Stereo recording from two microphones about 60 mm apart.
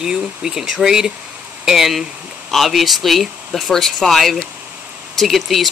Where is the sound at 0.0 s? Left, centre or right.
Centre.